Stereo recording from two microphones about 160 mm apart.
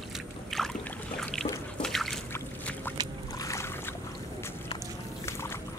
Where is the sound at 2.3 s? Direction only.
10° left (ahead or behind).